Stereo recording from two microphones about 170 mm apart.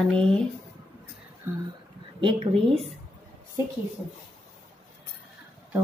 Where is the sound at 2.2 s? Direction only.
35° right (ahead or behind).